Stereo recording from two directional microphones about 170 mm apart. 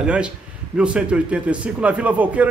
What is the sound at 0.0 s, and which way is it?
A man's voice, 5° right (ahead or behind).